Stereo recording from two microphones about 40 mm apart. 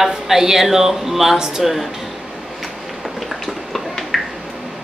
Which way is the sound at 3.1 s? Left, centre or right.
Centre.